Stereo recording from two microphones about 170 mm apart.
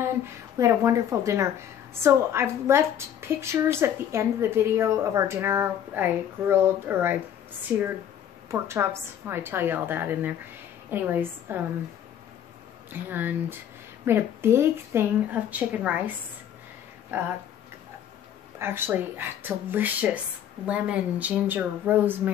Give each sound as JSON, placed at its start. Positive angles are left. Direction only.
{"t": 0.6, "sound": "a woman's voice", "side_deg": -15}
{"t": 13.1, "sound": "a woman's voice", "side_deg": -10}
{"t": 17.1, "sound": "a woman's voice", "side_deg": -15}
{"t": 18.6, "sound": "a woman's voice", "side_deg": -15}